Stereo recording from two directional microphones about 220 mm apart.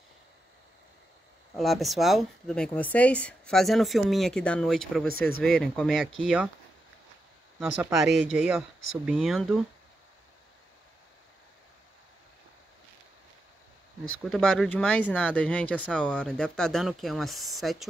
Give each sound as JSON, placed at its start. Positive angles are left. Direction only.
{"t": 1.5, "sound": "speech", "side_deg": 0}
{"t": 7.5, "sound": "speech", "side_deg": -5}
{"t": 14.2, "sound": "speech", "side_deg": 0}